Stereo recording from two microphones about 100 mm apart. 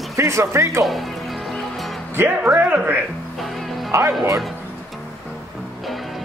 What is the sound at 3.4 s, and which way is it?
Music, centre (ahead or behind).